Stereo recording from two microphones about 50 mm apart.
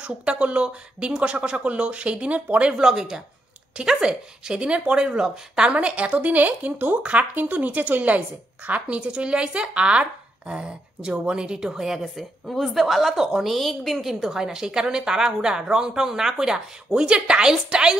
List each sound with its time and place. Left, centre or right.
0.0 s a woman's voice: right
2.8 s a woman's voice: centre